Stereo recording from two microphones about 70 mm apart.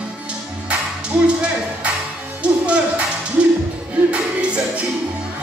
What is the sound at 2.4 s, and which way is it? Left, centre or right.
Music, centre.